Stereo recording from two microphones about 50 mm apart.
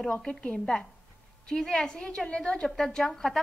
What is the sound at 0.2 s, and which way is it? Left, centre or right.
Speech, centre.